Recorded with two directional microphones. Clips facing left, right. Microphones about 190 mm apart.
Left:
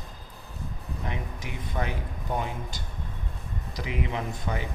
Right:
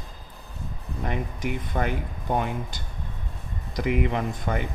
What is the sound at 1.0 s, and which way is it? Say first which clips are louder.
Speech: right 8 dB; 55° right (ahead or behind).